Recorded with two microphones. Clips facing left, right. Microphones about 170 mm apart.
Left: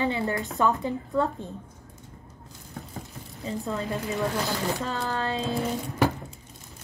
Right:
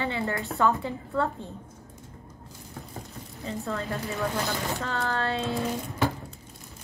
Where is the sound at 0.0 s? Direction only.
15° left (ahead or behind).